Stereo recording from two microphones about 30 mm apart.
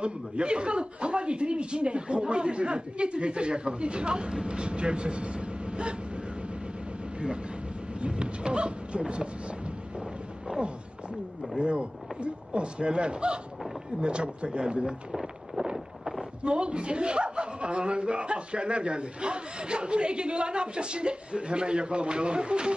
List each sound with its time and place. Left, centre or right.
0.0 s a man's voice: right
8.0 s a man's voice: right
11.5 s a man's voice: right
16.4 s a man's voice: right